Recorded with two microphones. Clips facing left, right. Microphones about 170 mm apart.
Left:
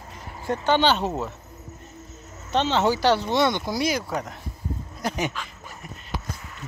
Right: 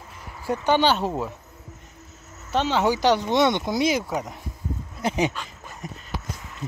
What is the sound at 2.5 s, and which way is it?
Speech, 10° right (ahead or behind).